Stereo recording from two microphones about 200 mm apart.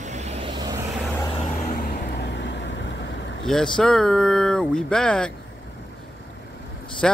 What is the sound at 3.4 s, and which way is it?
Speech, 5° left (ahead or behind).